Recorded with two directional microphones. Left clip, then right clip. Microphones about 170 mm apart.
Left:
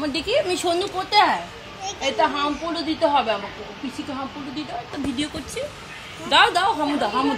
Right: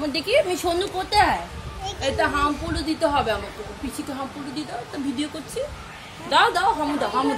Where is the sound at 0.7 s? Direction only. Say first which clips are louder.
Left 1 dB; 15° left (ahead or behind).